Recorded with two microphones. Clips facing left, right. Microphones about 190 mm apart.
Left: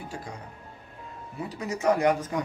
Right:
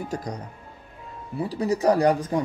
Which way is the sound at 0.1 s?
40° right (ahead or behind).